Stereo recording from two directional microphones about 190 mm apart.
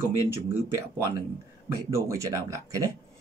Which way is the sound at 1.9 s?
15° right (ahead or behind).